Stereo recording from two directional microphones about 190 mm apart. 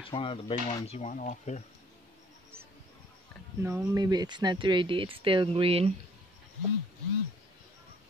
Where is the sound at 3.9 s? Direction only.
20° right (ahead or behind).